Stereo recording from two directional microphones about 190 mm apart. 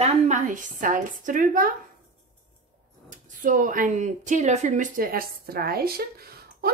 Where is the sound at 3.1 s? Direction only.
45° right (ahead or behind).